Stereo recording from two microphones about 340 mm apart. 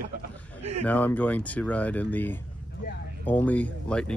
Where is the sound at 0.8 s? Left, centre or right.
Centre.